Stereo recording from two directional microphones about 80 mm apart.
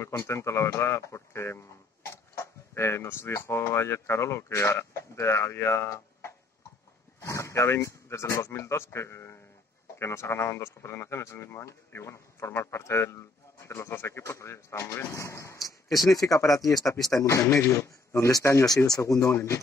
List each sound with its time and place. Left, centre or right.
0.0 s speech: left
19.3 s speech: left